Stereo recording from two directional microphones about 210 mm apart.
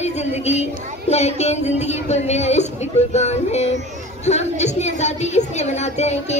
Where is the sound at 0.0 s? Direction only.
30° left (ahead or behind).